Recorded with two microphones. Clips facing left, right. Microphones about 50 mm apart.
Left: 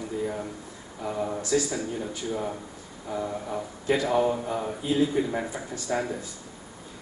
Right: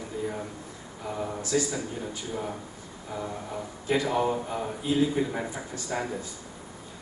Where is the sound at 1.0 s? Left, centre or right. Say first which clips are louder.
Left 4 dB; centre.